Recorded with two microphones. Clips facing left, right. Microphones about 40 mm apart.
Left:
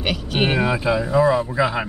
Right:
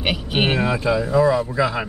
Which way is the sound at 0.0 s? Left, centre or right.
Centre.